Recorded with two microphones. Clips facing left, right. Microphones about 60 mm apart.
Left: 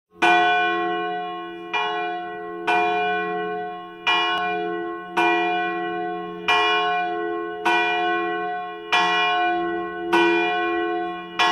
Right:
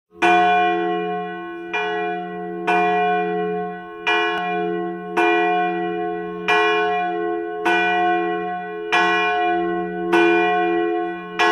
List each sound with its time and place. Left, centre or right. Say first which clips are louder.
0.2 s church bell: right 2 dB; right